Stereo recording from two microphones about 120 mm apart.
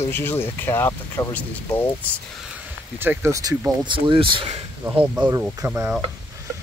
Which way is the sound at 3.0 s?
20° right (ahead or behind).